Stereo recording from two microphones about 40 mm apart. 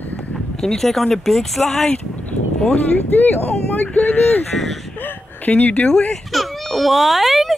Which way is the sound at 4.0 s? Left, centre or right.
Left.